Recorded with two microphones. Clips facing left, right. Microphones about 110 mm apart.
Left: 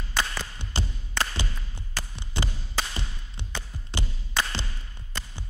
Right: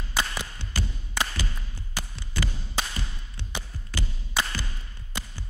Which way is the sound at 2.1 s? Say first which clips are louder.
Even; 25° left (ahead or behind).